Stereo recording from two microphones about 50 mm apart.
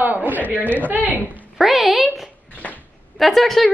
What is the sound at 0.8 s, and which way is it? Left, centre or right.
Speech, right.